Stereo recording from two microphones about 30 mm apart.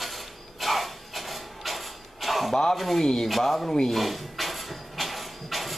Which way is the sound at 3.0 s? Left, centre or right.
Centre.